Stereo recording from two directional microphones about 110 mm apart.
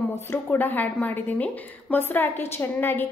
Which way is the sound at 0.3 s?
20° left (ahead or behind).